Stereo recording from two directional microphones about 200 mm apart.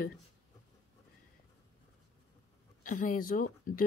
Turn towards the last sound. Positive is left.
turn(degrees=45)  # may be behind; listen again after turning